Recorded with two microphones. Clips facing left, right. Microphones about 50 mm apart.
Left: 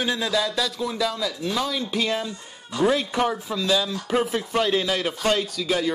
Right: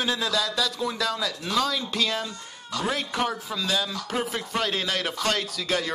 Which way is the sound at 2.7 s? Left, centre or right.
Left.